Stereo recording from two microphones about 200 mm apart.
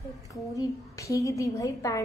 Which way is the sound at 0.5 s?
15° left (ahead or behind).